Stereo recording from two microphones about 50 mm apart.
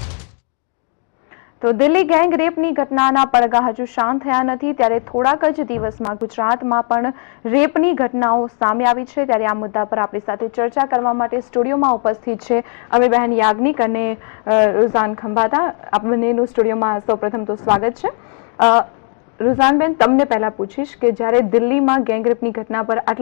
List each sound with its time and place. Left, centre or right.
1.9 s a woman's voice: centre
5.5 s a woman's voice: centre